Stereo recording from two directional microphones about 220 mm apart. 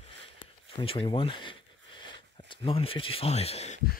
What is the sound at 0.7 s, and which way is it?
Speech, 25° left (ahead or behind).